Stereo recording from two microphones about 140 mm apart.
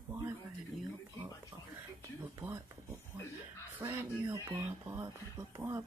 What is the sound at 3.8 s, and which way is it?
Speech, 35° right (ahead or behind).